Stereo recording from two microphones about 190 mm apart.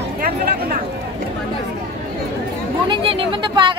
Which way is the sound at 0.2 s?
50° right (ahead or behind).